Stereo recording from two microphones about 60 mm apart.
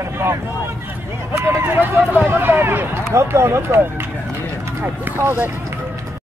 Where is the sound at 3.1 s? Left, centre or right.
Right.